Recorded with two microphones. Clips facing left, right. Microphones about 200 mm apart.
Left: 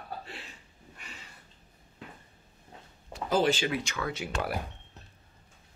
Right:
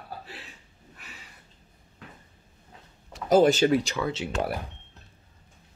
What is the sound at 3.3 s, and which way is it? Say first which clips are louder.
Speech: right 8 dB; 45° right (ahead or behind).